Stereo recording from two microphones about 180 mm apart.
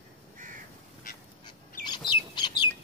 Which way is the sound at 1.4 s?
25° left (ahead or behind).